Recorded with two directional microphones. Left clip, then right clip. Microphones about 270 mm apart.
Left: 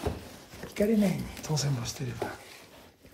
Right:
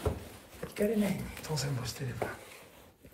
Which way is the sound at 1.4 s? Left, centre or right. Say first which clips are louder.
Left 4 dB; left.